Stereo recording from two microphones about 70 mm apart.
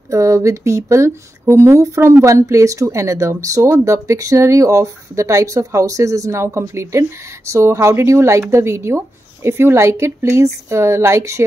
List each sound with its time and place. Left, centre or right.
0.1 s speech: right
3.6 s speech: right
3.9 s speech: right